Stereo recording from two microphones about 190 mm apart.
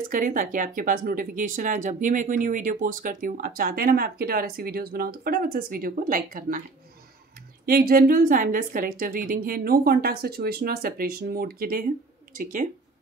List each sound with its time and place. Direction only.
0.1 s speech: 45° right (ahead or behind)
7.6 s speech: 50° right (ahead or behind)